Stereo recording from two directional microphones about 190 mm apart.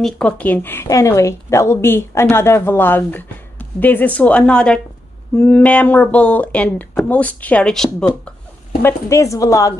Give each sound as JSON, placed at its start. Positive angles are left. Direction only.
{"t": 0.0, "sound": "speech", "side_deg": 5}
{"t": 8.8, "sound": "speech", "side_deg": 15}